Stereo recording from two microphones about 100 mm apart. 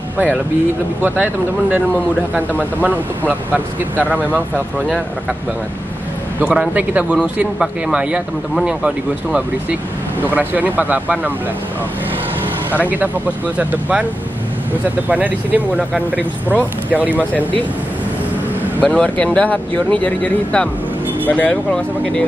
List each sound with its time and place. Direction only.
1.0 s speech: 15° right (ahead or behind)
2.8 s speech: 15° right (ahead or behind)
6.4 s speech: 10° right (ahead or behind)
13.6 s speech: 15° right (ahead or behind)
15.0 s speech: 15° right (ahead or behind)
16.9 s speech: 15° right (ahead or behind)
18.8 s speech: 15° left (ahead or behind)